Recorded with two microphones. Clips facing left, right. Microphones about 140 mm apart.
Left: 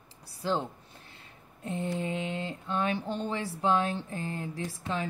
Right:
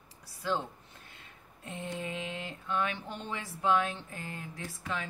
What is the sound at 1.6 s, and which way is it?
Mantra, 30° left (ahead or behind).